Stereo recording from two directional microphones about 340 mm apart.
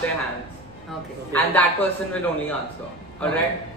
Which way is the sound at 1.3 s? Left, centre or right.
Centre.